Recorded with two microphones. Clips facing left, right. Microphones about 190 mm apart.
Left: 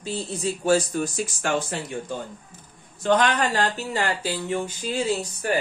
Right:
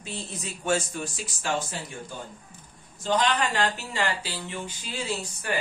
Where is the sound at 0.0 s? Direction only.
35° left (ahead or behind); by 3.3 s 60° left (ahead or behind).